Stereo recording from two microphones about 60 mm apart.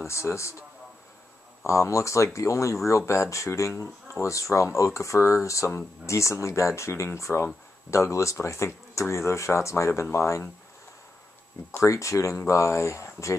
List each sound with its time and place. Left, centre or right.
0.0 s a man's voice: left
11.8 s speech: left